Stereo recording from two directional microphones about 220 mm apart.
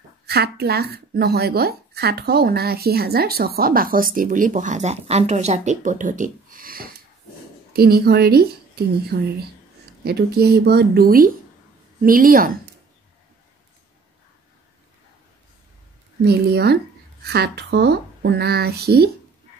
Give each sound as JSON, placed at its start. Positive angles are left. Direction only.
{"t": 0.3, "sound": "a woman's voice", "side_deg": -45}
{"t": 16.3, "sound": "a woman's voice", "side_deg": -45}